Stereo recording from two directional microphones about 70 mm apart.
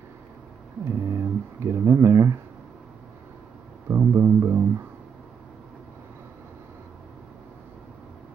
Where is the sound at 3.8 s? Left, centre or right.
Right.